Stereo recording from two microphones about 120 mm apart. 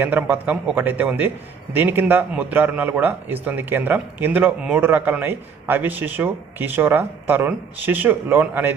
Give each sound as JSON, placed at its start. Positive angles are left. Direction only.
{"t": 0.0, "sound": "a man's voice", "side_deg": -15}